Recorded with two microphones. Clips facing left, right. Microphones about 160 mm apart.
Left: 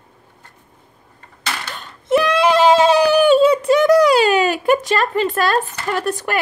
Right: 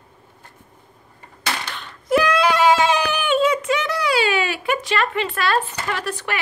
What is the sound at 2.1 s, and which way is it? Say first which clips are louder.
Speech: left 3 dB; 25° left (ahead or behind).